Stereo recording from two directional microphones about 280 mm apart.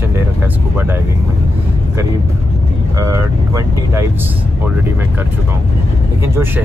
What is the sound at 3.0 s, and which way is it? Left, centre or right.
Speech, centre.